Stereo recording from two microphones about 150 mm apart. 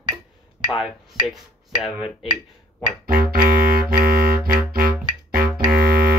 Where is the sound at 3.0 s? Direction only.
75° right (ahead or behind).